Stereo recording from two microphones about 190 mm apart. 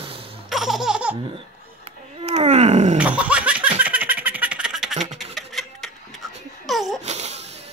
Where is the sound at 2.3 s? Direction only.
35° right (ahead or behind).